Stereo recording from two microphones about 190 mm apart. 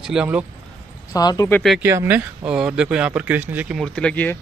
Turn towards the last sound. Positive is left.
turn(degrees=5)  # may be behind; listen again after turning